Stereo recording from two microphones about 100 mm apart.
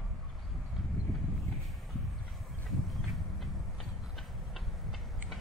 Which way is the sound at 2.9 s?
Centre (ahead or behind).